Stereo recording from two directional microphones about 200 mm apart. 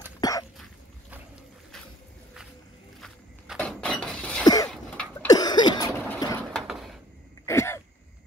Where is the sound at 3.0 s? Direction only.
5° left (ahead or behind).